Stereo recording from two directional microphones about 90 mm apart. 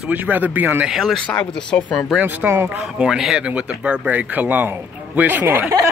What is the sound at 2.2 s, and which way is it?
Speech, 20° right (ahead or behind).